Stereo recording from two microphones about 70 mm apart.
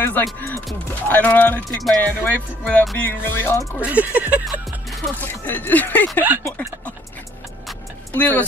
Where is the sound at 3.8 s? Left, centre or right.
Right.